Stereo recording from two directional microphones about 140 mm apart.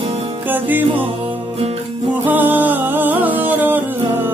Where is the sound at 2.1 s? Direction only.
15° right (ahead or behind).